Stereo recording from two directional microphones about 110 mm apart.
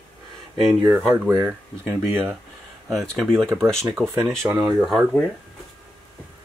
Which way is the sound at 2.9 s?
Centre (ahead or behind).